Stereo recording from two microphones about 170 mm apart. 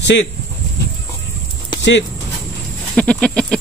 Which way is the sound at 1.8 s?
90° left.